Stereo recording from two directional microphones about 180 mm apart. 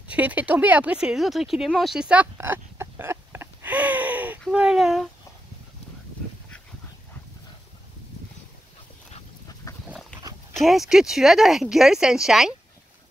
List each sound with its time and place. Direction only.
0.1 s speech: 10° right (ahead or behind)
9.6 s pig: 20° left (ahead or behind)
10.5 s speech: centre (ahead or behind)